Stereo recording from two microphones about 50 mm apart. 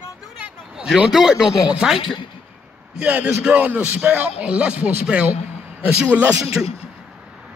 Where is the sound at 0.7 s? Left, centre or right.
Centre.